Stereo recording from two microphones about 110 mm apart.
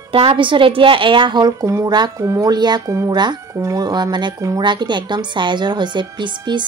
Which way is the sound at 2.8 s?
30° right (ahead or behind).